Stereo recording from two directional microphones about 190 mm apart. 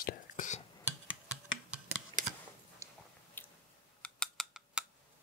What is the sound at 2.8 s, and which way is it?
Biting, 15° right (ahead or behind).